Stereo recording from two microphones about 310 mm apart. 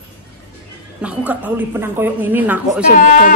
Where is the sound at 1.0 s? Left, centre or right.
Centre.